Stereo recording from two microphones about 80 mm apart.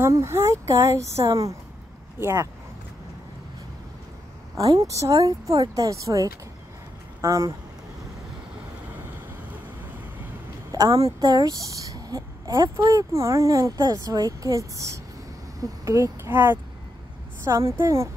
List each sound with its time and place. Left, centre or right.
0.1 s speech: right
4.6 s speech: right
10.7 s speech: right
16.3 s speech: right
17.5 s speech: right